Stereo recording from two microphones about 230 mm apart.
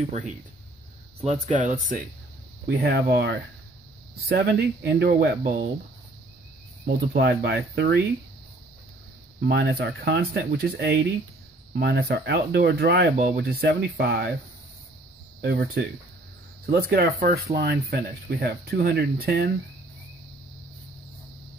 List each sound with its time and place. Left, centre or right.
1.2 s speech: right
2.6 s speech: right
7.2 s speech: right
9.4 s speech: right
15.4 s speech: right